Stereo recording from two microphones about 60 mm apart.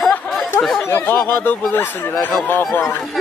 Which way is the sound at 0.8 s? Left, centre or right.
Left.